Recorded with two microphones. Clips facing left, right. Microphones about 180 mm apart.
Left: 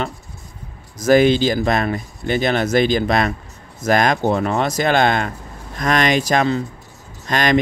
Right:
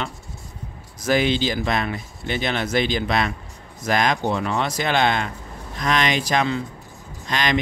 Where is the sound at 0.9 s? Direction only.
45° left (ahead or behind).